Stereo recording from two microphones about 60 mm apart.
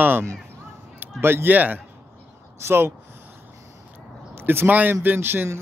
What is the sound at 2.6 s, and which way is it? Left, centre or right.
Speech, right.